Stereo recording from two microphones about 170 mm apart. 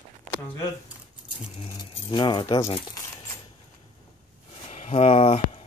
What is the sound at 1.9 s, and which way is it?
Keys jangling, 30° left (ahead or behind).